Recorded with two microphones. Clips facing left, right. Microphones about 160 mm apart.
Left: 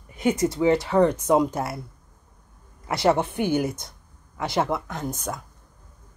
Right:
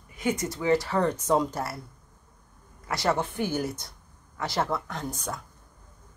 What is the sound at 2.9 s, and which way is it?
Speech, 25° left (ahead or behind).